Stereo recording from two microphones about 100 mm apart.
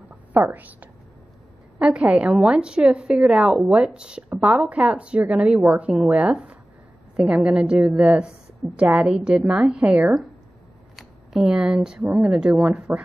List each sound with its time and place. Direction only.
0.5 s speech: 15° right (ahead or behind)